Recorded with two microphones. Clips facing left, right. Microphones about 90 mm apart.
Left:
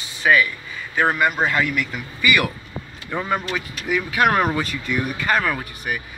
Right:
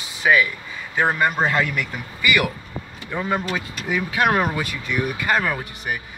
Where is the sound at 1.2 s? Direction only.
35° right (ahead or behind).